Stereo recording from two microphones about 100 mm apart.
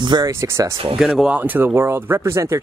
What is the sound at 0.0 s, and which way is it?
Speech, 50° right (ahead or behind).